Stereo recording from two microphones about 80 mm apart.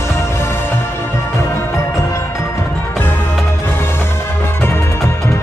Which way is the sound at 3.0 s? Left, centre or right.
Left.